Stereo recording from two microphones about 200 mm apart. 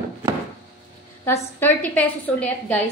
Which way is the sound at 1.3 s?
10° left (ahead or behind).